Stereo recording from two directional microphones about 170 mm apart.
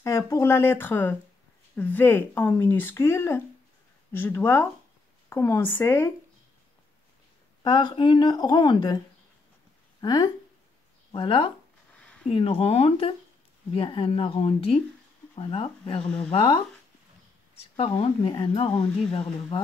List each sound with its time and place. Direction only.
0.0 s speech: 15° left (ahead or behind)
7.6 s a woman's voice: 25° left (ahead or behind)
11.9 s a sound: 5° left (ahead or behind)
12.3 s speech: 35° left (ahead or behind)